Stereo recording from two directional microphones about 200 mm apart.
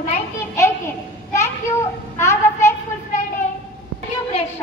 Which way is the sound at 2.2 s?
15° left (ahead or behind).